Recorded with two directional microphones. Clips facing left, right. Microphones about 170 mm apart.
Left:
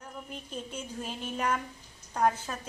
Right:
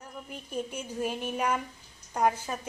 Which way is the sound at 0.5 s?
10° right (ahead or behind).